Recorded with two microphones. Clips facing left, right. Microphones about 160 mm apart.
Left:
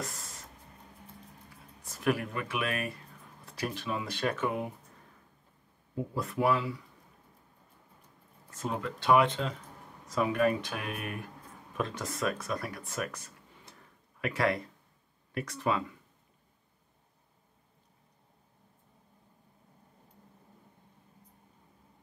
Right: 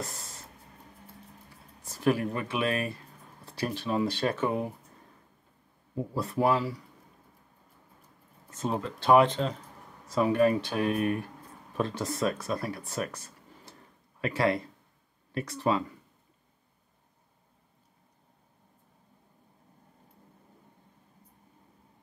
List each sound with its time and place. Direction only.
1.9 s speech: 30° right (ahead or behind)
6.1 s speech: 35° right (ahead or behind)
8.5 s speech: 30° right (ahead or behind)